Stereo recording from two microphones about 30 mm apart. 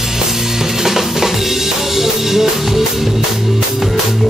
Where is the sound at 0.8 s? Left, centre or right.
Centre.